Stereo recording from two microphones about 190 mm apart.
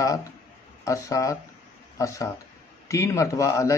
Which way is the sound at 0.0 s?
15° left (ahead or behind).